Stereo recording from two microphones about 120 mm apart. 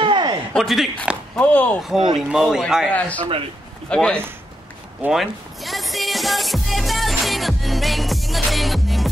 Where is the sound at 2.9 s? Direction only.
10° left (ahead or behind).